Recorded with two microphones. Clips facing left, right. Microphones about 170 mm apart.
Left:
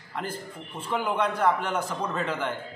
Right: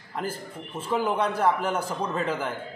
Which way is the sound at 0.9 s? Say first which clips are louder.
Right 1 dB; 30° right (ahead or behind).